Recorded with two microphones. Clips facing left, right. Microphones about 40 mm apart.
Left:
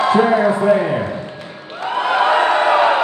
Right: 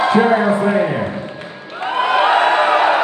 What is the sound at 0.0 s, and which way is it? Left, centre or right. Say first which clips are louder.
A man's voice: even; right.